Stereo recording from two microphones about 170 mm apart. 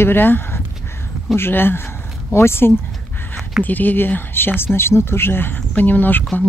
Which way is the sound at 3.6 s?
10° left (ahead or behind).